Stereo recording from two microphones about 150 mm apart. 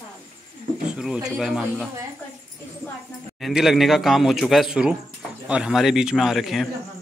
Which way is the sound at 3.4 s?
Centre (ahead or behind).